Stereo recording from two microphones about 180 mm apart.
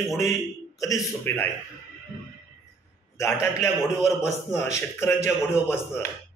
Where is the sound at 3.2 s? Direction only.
15° left (ahead or behind).